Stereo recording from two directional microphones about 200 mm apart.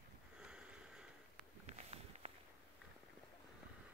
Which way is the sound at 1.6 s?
35° right (ahead or behind).